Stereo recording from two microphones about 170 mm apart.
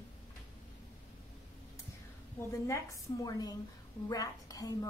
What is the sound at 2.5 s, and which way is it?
A woman's voice, 20° left (ahead or behind).